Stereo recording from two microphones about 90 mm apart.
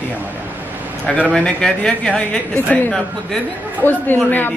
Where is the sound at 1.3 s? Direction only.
10° left (ahead or behind).